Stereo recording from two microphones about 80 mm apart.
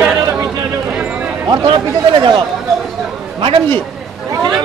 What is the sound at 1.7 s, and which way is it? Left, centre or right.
Speech, right.